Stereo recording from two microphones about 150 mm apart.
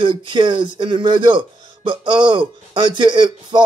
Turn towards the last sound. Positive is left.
turn(degrees=-30)  # may be behind; listen again after turning